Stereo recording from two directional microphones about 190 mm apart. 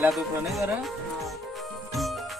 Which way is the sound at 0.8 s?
Centre (ahead or behind).